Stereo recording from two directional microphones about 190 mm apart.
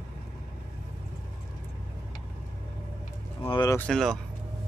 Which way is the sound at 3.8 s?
5° left (ahead or behind).